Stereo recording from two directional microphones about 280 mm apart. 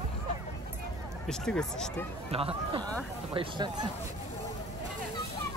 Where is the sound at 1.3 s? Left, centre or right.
Centre.